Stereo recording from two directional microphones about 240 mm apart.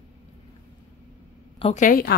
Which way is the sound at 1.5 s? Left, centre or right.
Left.